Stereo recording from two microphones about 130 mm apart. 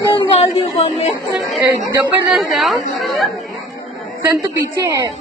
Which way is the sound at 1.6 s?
25° right (ahead or behind).